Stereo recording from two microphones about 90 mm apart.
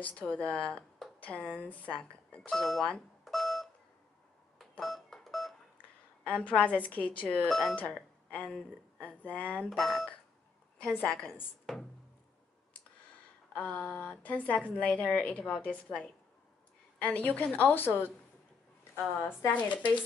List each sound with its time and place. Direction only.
0.3 s speech: 15° left (ahead or behind)
3.3 s telephone dialing: centre (ahead or behind)
4.6 s a sound: centre (ahead or behind)
6.4 s speech: 15° left (ahead or behind)
7.4 s speech: centre (ahead or behind)
7.7 s speech: 15° left (ahead or behind)
9.7 s speech: centre (ahead or behind)
13.6 s a woman's voice: 10° left (ahead or behind)
19.5 s speech: 60° left (ahead or behind)